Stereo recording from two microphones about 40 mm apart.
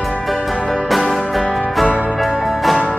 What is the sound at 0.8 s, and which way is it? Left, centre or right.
Music, centre.